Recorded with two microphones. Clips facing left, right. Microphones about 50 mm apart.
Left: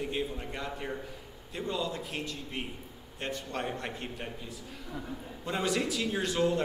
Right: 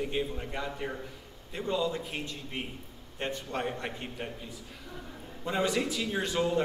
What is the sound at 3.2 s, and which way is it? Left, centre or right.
Speech, right.